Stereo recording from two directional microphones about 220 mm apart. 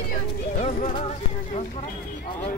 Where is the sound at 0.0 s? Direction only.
40° left (ahead or behind).